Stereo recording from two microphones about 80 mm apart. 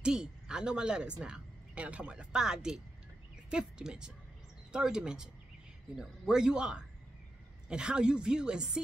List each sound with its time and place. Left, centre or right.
0.0 s speech: centre